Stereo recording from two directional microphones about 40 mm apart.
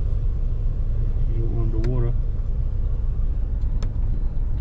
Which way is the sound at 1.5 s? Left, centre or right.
Centre.